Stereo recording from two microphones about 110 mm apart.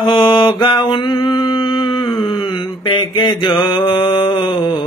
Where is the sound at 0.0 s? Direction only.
45° left (ahead or behind).